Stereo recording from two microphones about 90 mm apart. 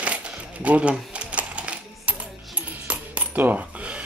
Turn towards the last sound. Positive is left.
turn(degrees=-15)  # may be behind; listen again after turning